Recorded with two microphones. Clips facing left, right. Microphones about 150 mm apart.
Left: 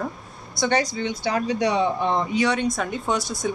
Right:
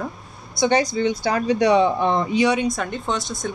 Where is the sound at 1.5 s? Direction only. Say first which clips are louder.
Right 5 dB; 70° right (ahead or behind).